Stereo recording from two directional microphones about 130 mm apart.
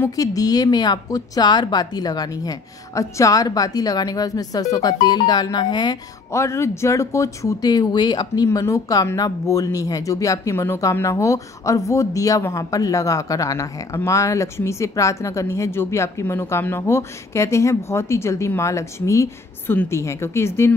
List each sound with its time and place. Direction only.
0.0 s speech: 25° left (ahead or behind)
6.3 s speech: 20° left (ahead or behind)
8.5 s speech: 25° left (ahead or behind)